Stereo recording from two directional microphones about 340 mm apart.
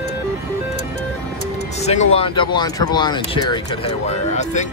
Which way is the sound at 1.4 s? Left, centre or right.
Centre.